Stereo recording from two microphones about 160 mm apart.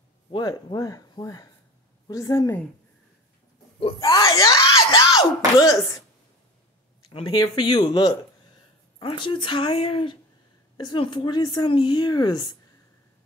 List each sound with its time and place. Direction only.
0.3 s speech: 30° left (ahead or behind)
3.8 s speech: 25° left (ahead or behind)
7.1 s speech: 30° left (ahead or behind)